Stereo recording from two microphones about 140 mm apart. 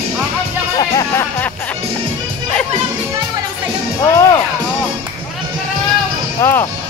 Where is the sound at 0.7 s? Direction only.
25° left (ahead or behind).